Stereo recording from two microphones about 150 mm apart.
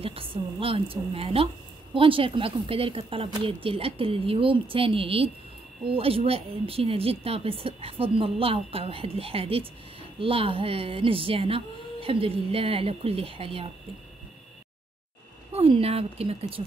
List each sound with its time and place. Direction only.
0.0 s speech: 40° right (ahead or behind)
15.5 s speech: 40° right (ahead or behind)